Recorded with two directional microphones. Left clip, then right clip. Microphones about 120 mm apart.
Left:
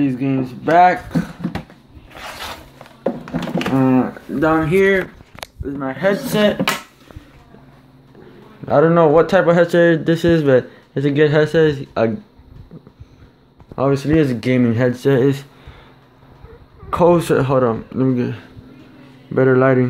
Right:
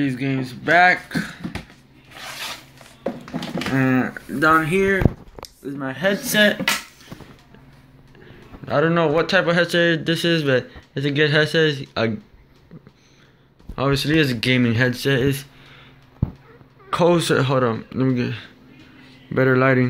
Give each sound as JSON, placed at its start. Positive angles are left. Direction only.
{"t": 0.0, "sound": "speech", "side_deg": 10}
{"t": 3.7, "sound": "a man's voice", "side_deg": 5}
{"t": 4.4, "sound": "speech", "side_deg": -5}
{"t": 8.6, "sound": "speech", "side_deg": 25}
{"t": 13.7, "sound": "speech", "side_deg": 0}
{"t": 15.0, "sound": "speech", "side_deg": 25}
{"t": 16.9, "sound": "a man's voice", "side_deg": 10}